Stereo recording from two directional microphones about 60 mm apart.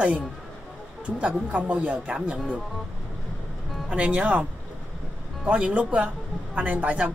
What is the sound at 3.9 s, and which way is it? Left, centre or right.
Speech, right.